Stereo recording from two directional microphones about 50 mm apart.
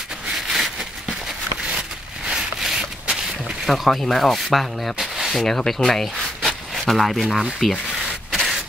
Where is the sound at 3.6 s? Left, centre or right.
Centre.